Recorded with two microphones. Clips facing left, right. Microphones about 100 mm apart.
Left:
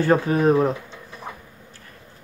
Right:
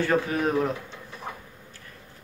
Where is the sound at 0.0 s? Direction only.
35° left (ahead or behind).